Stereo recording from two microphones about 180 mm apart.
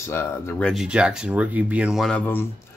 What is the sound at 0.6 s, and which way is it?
A man's voice, 5° right (ahead or behind).